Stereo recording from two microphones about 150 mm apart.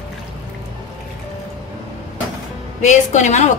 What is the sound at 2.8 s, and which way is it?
Speech, 50° left (ahead or behind).